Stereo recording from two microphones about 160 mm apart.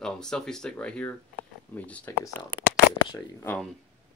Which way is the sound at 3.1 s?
15° left (ahead or behind).